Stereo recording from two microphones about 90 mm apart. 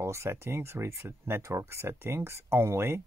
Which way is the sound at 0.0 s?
30° right (ahead or behind).